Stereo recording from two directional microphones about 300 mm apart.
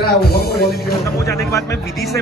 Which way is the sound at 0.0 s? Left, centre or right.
Left.